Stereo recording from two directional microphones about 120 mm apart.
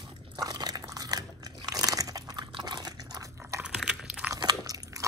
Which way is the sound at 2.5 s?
35° right (ahead or behind).